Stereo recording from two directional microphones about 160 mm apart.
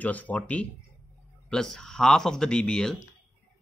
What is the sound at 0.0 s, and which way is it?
Speech, 10° left (ahead or behind).